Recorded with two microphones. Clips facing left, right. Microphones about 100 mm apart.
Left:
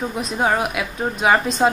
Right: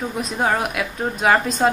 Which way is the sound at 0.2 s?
5° left (ahead or behind).